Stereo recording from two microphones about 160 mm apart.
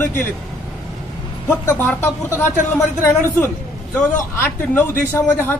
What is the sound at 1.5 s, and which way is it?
A man's voice, 15° left (ahead or behind).